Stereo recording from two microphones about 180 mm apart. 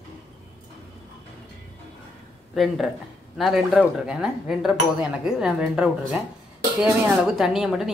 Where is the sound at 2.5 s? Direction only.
Centre (ahead or behind).